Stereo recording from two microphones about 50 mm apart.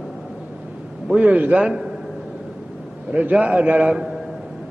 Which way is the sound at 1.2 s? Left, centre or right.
Right.